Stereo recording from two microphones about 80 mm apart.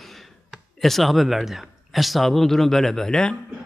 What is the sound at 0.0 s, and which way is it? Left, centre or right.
Speech, centre.